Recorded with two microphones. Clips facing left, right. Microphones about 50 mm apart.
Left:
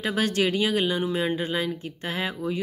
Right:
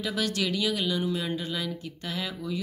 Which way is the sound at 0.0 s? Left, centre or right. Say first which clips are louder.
Left 5 dB; left.